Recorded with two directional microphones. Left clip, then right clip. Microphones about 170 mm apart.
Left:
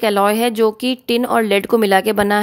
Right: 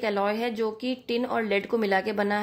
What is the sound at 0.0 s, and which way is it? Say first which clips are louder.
Speech: left 11 dB; 55° left (ahead or behind).